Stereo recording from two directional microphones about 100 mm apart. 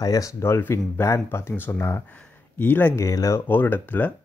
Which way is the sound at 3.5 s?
20° left (ahead or behind).